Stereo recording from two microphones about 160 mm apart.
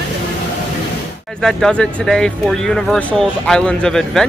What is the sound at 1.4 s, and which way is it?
Speech, 5° left (ahead or behind).